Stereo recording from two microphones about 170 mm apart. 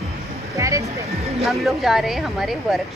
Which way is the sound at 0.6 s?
20° right (ahead or behind).